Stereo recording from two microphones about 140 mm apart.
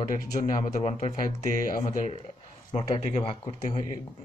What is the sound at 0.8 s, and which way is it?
Speech, 50° left (ahead or behind).